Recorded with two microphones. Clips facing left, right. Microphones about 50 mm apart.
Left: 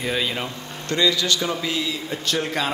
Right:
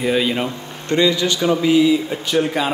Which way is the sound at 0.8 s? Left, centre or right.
Right.